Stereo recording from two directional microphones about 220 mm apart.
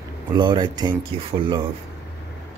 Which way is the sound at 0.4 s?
20° right (ahead or behind).